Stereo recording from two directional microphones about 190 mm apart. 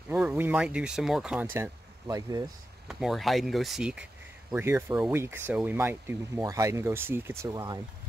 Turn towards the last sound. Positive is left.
turn(degrees=-20)  # may be behind; listen again after turning